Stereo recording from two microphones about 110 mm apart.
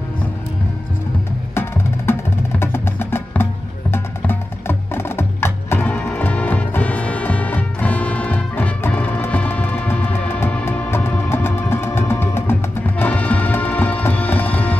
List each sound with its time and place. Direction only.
1.5 s music: 20° left (ahead or behind)